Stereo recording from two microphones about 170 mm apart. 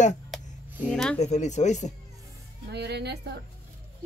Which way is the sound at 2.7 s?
80° right.